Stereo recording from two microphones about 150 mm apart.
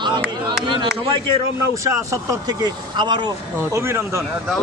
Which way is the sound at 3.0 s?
30° right (ahead or behind).